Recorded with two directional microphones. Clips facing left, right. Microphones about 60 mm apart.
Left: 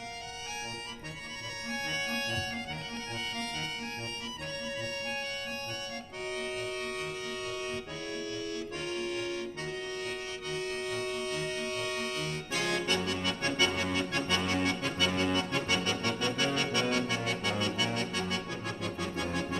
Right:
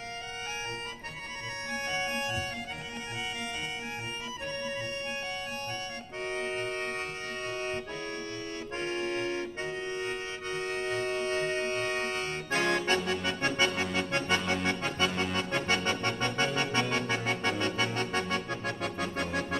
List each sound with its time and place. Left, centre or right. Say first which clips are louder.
1.7 s music: right 2 dB; right
6.3 s accordion: right 3 dB; right